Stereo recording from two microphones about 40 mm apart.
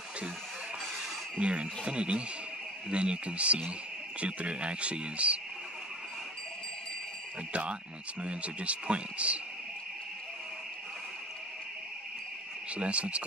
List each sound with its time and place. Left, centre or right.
1.4 s speech: right
8.2 s speech: right
12.7 s speech: right